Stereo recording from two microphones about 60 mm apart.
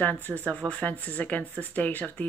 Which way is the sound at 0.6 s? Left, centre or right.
Right.